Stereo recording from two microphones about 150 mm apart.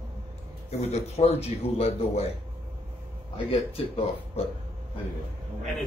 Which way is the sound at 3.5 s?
40° left (ahead or behind).